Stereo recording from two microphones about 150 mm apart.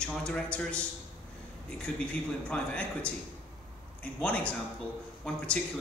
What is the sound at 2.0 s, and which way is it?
A man's voice, 10° left (ahead or behind).